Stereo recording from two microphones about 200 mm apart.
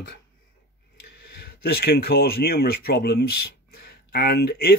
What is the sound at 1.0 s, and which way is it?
Speech, 50° left (ahead or behind).